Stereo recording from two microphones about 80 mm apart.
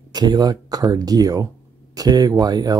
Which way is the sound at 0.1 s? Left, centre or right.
Right.